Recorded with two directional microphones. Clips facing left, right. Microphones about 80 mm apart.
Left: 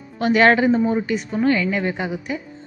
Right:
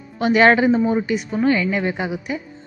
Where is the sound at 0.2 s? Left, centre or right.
Centre.